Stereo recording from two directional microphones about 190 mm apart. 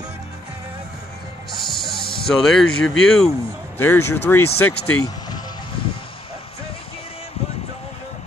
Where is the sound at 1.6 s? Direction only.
Centre (ahead or behind).